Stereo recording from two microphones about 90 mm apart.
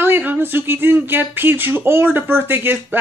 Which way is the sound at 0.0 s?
20° right (ahead or behind).